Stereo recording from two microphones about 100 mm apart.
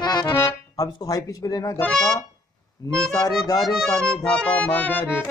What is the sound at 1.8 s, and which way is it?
Accordion, 5° left (ahead or behind).